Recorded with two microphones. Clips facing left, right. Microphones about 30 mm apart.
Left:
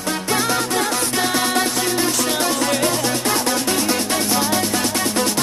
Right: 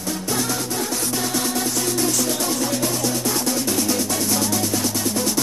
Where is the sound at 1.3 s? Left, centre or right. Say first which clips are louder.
Left 4 dB; left.